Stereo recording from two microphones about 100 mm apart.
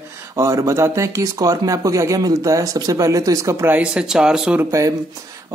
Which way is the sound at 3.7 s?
10° right (ahead or behind).